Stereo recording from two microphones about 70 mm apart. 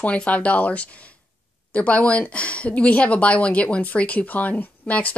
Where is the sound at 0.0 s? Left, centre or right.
Centre.